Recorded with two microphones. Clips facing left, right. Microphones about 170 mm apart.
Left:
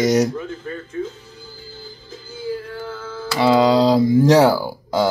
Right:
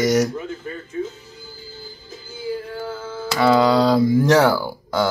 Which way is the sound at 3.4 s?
15° left (ahead or behind).